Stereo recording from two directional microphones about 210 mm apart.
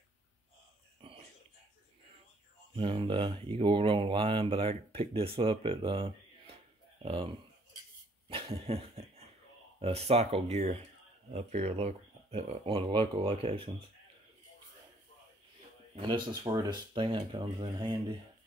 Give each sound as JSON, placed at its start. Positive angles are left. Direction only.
{"t": 1.0, "sound": "whispering", "side_deg": -25}
{"t": 2.7, "sound": "speech", "side_deg": -25}
{"t": 8.3, "sound": "dog", "side_deg": -25}
{"t": 9.8, "sound": "speech", "side_deg": -30}
{"t": 16.0, "sound": "speech", "side_deg": -20}